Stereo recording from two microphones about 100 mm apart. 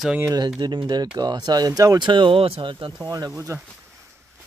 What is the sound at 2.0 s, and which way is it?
Speech, 55° right (ahead or behind).